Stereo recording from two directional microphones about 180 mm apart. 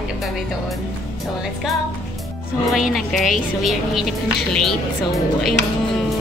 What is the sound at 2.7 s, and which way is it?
A woman's voice, centre (ahead or behind).